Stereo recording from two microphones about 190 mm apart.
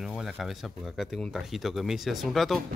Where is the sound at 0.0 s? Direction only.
Centre (ahead or behind).